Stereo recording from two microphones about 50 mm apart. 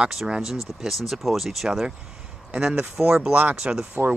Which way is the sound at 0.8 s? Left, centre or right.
Centre.